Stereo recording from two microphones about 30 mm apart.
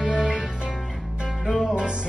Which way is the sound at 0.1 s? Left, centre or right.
Right.